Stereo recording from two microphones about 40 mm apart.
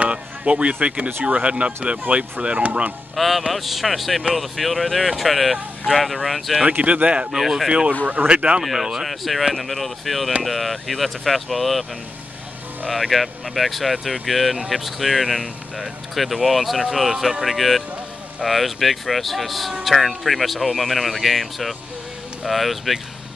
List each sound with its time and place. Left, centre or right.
0.0 s speech: right
3.2 s speech: centre
6.8 s speech: right
7.2 s speech: centre
8.0 s speech: right
8.3 s speech: right
9.0 s speech: centre
12.8 s speech: centre